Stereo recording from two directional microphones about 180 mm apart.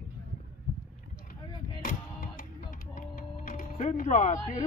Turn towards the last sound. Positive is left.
turn(degrees=40)  # may be behind; listen again after turning